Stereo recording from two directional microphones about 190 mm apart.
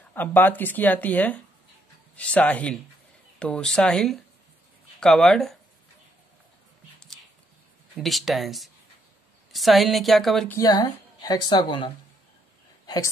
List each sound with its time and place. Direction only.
0.1 s a woman's voice: 10° left (ahead or behind)
8.0 s a woman's voice: centre (ahead or behind)
10.6 s a woman's voice: 20° left (ahead or behind)